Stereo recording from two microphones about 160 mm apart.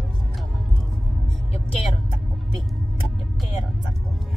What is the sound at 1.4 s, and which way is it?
Music, 40° left (ahead or behind).